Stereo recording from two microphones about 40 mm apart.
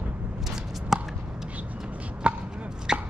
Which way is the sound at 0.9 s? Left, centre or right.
Centre.